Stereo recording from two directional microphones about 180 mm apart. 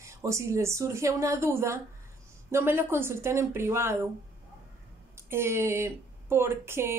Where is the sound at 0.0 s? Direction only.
15° right (ahead or behind).